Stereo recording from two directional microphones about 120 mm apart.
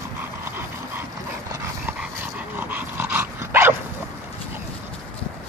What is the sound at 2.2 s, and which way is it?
Dog, 15° right (ahead or behind).